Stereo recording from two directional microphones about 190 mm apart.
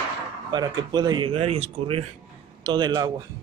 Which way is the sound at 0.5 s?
20° right (ahead or behind).